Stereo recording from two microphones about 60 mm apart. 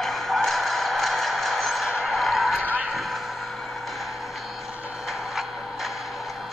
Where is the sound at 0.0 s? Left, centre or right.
Centre.